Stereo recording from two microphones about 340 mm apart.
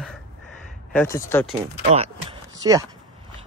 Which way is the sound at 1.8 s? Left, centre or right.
Centre.